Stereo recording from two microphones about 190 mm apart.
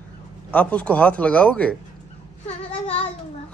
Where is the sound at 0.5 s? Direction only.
5° left (ahead or behind).